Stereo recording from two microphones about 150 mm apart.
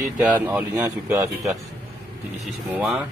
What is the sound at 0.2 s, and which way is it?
Speech, 10° right (ahead or behind).